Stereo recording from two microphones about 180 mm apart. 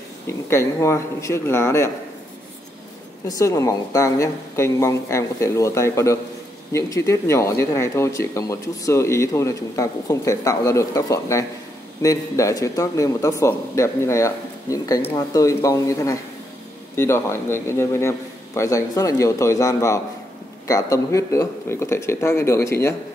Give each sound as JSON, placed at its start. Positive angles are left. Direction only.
{"t": 0.3, "sound": "speech", "side_deg": 15}
{"t": 3.3, "sound": "speech", "side_deg": 20}